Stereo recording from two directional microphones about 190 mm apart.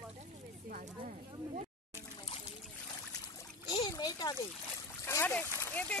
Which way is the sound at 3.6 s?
20° left (ahead or behind).